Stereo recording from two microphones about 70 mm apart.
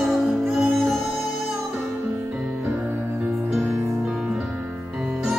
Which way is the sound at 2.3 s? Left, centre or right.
Centre.